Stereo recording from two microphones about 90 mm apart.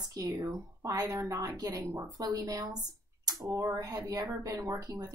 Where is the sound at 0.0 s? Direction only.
40° right (ahead or behind).